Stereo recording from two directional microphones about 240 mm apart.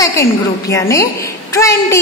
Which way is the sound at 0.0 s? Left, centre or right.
Centre.